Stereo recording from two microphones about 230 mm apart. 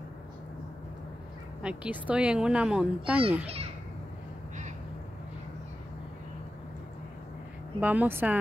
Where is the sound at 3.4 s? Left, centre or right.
Right.